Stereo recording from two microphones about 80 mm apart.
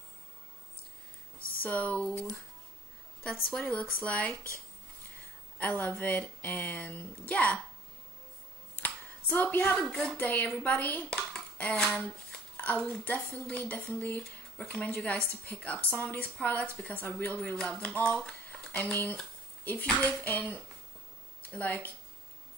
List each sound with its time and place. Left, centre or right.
1.6 s a woman's voice: centre
3.4 s a woman's voice: centre
5.6 s a woman's voice: left
8.7 s a sound: left
9.8 s a woman's voice: centre
10.1 s a woman's voice: left
11.1 s dishes: centre
11.7 s a woman's voice: centre
18.7 s a woman's voice: left